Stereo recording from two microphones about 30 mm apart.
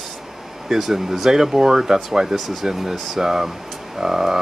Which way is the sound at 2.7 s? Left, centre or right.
Centre.